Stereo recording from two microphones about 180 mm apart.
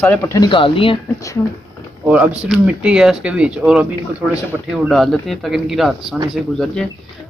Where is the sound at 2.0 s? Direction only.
5° right (ahead or behind).